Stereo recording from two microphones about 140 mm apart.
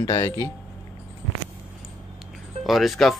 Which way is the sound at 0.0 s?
25° left (ahead or behind).